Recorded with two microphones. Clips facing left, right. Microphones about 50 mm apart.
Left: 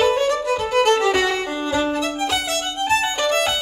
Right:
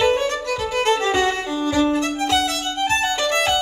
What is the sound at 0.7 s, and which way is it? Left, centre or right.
Music, left.